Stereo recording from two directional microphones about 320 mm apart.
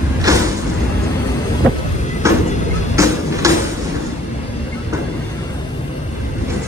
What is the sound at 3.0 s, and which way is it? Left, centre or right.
Music, centre.